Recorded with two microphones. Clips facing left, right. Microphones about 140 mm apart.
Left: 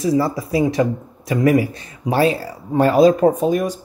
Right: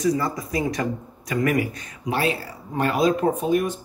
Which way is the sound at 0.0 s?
30° left (ahead or behind).